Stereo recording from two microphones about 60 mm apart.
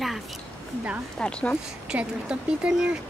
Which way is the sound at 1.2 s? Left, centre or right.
Centre.